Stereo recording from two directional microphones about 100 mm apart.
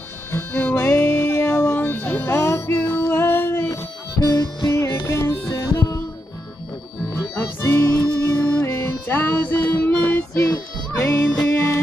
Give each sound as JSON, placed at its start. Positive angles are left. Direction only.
{"t": 0.3, "sound": "music", "side_deg": 20}
{"t": 3.1, "sound": "child singing", "side_deg": 20}
{"t": 4.2, "sound": "music", "side_deg": 40}
{"t": 5.0, "sound": "music", "side_deg": 30}
{"t": 7.2, "sound": "music", "side_deg": 25}
{"t": 10.3, "sound": "music", "side_deg": 30}